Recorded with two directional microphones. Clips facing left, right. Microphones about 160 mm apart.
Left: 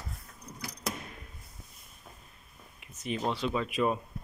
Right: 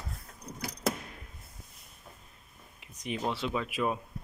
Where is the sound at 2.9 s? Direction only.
15° right (ahead or behind).